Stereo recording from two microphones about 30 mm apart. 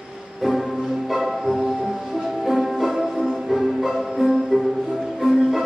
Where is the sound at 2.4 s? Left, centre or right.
Centre.